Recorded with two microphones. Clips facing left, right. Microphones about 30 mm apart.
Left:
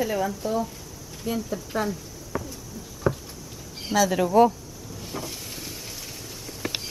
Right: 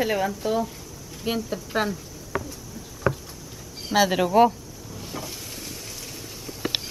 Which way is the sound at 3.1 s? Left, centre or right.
Right.